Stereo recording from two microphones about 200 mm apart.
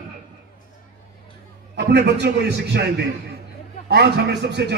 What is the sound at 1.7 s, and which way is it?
A man's voice, 55° right (ahead or behind).